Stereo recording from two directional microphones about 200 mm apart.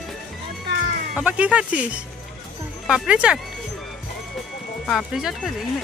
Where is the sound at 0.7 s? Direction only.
60° right (ahead or behind).